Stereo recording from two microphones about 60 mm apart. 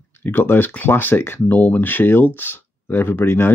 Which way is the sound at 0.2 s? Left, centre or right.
Left.